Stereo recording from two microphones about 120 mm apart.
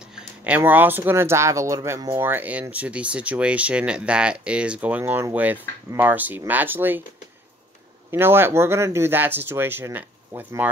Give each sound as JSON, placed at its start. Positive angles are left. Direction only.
{"t": 0.0, "sound": "a sound", "side_deg": -10}
{"t": 0.6, "sound": "speech", "side_deg": -15}
{"t": 2.2, "sound": "speech", "side_deg": -15}
{"t": 8.1, "sound": "speech", "side_deg": -20}